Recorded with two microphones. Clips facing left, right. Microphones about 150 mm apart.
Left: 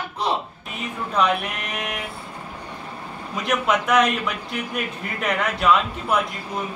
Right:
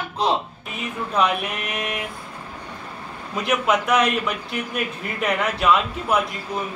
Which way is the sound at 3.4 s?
Centre (ahead or behind).